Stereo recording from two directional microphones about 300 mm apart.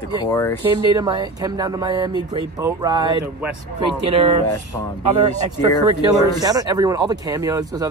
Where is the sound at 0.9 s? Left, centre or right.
Centre.